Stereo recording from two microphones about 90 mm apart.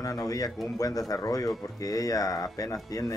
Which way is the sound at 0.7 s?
40° left (ahead or behind).